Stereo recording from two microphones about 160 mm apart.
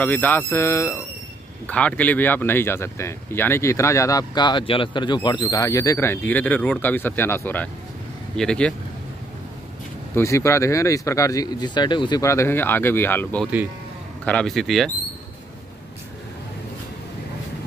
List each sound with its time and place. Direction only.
0.0 s speech: 10° left (ahead or behind)
10.1 s speech: 20° left (ahead or behind); by 14.9 s centre (ahead or behind)